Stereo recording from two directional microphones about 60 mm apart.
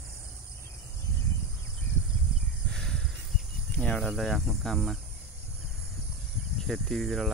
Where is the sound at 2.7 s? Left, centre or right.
Centre.